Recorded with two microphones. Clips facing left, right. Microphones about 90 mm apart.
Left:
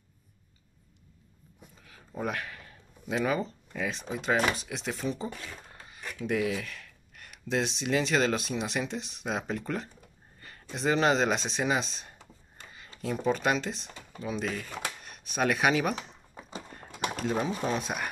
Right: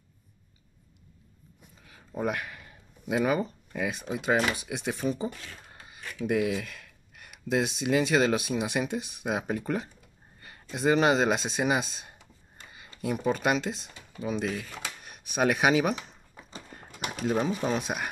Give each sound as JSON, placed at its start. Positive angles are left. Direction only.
{"t": 1.9, "sound": "a sound", "side_deg": -15}
{"t": 4.1, "sound": "speech", "side_deg": -10}
{"t": 17.1, "sound": "speech", "side_deg": 0}